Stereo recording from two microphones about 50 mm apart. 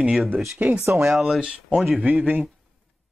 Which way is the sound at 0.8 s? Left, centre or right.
Right.